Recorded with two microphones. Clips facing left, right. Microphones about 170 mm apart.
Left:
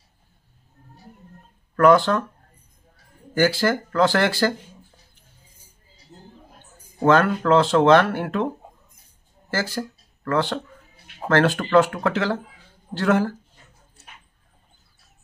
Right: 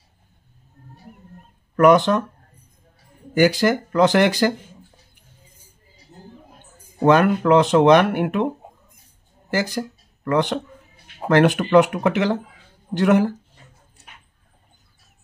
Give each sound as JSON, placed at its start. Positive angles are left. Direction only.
{"t": 1.8, "sound": "speech", "side_deg": -20}
{"t": 3.3, "sound": "speech", "side_deg": -15}
{"t": 7.1, "sound": "speech", "side_deg": -15}
{"t": 9.5, "sound": "speech", "side_deg": -15}